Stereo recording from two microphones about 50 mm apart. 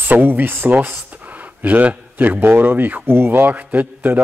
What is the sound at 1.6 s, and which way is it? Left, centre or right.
A man's voice, right.